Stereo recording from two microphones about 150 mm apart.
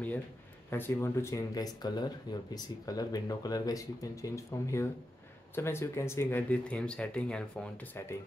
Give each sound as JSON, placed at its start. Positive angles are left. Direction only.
{"t": 0.7, "sound": "speech", "side_deg": 15}